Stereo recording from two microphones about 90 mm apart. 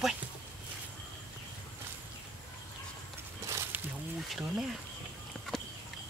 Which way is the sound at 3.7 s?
20° right (ahead or behind).